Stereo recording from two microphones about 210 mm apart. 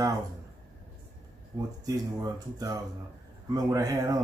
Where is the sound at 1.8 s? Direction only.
15° right (ahead or behind).